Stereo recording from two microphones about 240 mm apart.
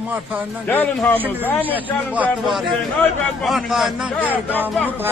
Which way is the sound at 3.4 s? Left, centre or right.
Centre.